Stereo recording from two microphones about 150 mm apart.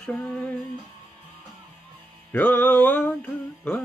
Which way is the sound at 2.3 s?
10° left (ahead or behind).